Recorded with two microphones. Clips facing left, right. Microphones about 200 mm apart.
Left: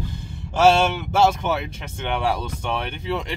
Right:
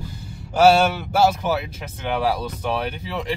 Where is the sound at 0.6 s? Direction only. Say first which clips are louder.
Right 2 dB; 5° right (ahead or behind).